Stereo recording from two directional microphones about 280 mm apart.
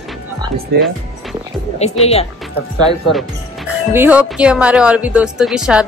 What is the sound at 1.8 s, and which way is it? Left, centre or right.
Speech, left.